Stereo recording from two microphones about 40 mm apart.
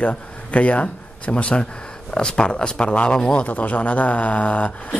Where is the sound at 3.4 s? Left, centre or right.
Left.